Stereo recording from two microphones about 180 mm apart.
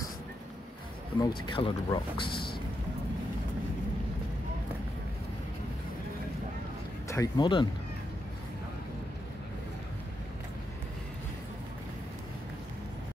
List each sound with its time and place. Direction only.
1.2 s speech: 25° left (ahead or behind)
7.1 s speech: 20° left (ahead or behind)